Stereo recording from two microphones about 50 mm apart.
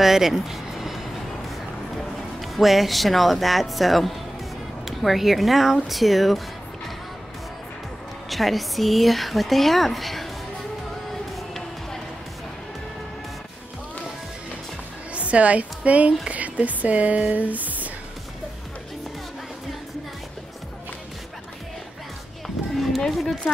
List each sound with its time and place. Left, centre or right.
0.0 s a sound: centre
2.4 s speech: centre
8.3 s speech: centre
11.3 s music: centre
15.1 s speech: right
22.8 s a sound: centre